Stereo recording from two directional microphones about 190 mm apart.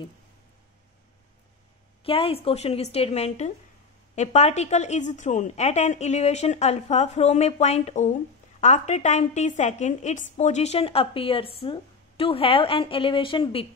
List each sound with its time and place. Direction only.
2.0 s a woman's voice: 30° left (ahead or behind)